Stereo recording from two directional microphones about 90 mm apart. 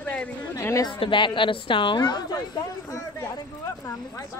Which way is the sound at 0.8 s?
70° left (ahead or behind).